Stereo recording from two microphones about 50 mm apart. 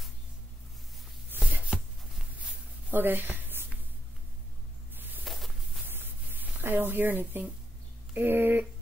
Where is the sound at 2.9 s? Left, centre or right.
Right.